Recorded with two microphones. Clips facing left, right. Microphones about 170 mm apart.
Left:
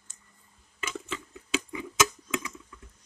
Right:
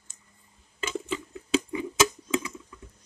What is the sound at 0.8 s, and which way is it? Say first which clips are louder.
Rodents: right 5 dB; 30° right (ahead or behind).